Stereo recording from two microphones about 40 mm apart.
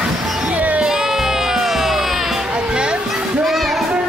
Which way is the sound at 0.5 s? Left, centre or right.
Right.